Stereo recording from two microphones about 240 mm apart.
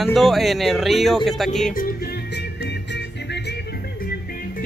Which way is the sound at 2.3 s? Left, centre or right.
Left.